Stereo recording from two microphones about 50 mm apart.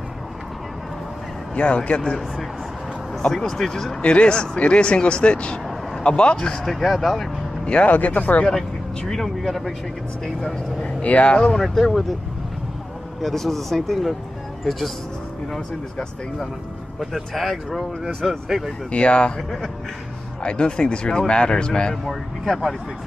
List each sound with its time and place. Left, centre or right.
1.5 s speech: left
4.0 s speech: left
6.3 s speech: centre
7.6 s speech: left
7.9 s speech: left
8.5 s speech: centre
10.8 s speech: left
11.5 s speech: centre
13.2 s speech: centre
18.9 s speech: left
20.4 s speech: centre
22.0 s speech: centre